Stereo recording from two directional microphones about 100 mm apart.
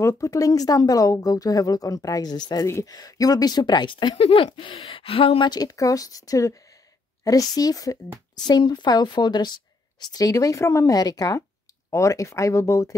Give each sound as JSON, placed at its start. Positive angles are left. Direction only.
{"t": 0.0, "sound": "speech", "side_deg": 30}
{"t": 2.6, "sound": "speech", "side_deg": 30}
{"t": 4.2, "sound": "speech", "side_deg": 70}
{"t": 4.5, "sound": "speech", "side_deg": 55}
{"t": 4.7, "sound": "speech", "side_deg": 70}
{"t": 5.4, "sound": "speech", "side_deg": 45}